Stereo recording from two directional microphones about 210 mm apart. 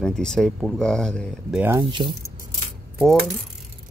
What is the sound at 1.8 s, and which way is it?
Speech, 20° right (ahead or behind).